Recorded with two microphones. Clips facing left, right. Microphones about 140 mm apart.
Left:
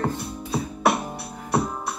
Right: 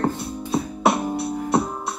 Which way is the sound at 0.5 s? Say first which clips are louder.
Right 2 dB; 20° right (ahead or behind).